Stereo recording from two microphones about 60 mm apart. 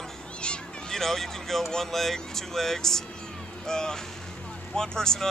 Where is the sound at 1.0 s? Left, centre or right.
Centre.